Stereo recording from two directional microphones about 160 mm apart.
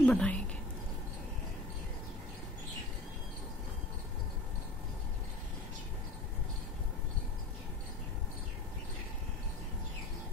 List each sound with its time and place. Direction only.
0.0 s speech: 10° left (ahead or behind)